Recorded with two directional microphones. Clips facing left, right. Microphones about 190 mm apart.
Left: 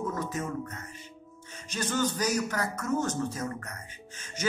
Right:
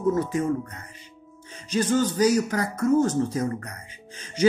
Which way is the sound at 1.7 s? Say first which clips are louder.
Right 7 dB; 10° right (ahead or behind).